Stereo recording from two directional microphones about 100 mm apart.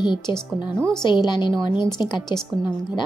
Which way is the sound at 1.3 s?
50° left (ahead or behind).